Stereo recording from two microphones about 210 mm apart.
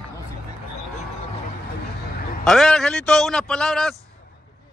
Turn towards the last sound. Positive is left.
turn(degrees=5)  # may be behind; listen again after turning